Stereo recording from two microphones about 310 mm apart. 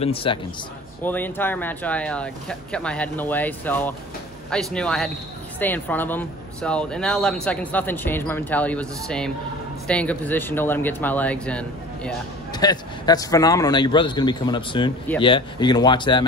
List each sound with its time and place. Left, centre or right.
0.0 s speech: centre
1.0 s speech: centre